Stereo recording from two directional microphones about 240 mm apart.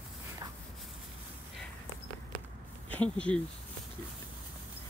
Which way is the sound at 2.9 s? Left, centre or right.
Centre.